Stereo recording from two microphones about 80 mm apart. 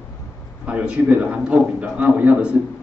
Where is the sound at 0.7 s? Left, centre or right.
Centre.